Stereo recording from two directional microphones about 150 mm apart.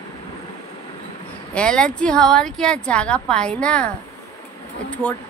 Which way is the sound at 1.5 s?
5° left (ahead or behind).